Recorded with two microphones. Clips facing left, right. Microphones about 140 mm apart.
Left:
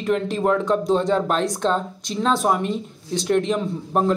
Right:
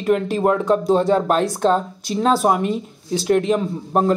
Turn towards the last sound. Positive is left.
turn(degrees=0)  # may be behind; listen again after turning